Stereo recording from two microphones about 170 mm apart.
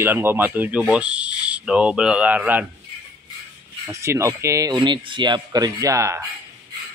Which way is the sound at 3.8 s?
15° right (ahead or behind).